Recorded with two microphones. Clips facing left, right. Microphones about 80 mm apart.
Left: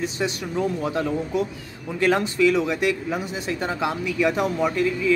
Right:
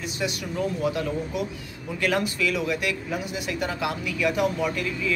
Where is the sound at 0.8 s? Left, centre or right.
Left.